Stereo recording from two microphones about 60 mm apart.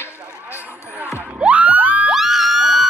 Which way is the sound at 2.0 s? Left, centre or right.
Centre.